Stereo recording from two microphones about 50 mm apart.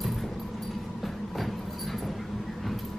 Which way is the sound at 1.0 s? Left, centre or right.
Centre.